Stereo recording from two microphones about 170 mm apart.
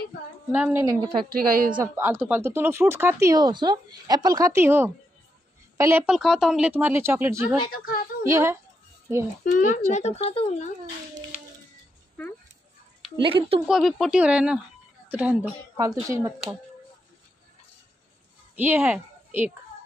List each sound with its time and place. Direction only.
0.5 s speech: 10° right (ahead or behind)
1.3 s a woman's voice: 60° right (ahead or behind)
2.0 s speech: 15° right (ahead or behind)
7.7 s a woman's voice: 60° left (ahead or behind)
8.3 s speech: 15° right (ahead or behind)
9.4 s speech: 50° left (ahead or behind)
13.2 s a woman's voice: 30° right (ahead or behind)
13.7 s speech: centre (ahead or behind); by 16.5 s 20° right (ahead or behind)
18.6 s speech: 10° right (ahead or behind)